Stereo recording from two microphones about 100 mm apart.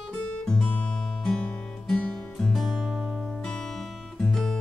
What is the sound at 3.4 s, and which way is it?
Music, 5° left (ahead or behind).